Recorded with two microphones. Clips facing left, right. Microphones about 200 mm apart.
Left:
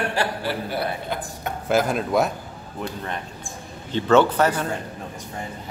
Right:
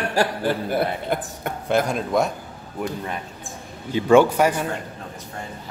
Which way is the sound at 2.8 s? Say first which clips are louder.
Right 2 dB; 10° right (ahead or behind).